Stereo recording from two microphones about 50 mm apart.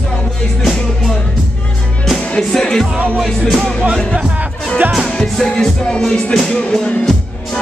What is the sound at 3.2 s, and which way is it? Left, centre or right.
Speech, centre.